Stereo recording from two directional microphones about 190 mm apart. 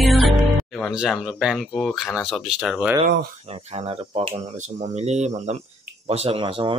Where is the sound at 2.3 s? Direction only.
Centre (ahead or behind).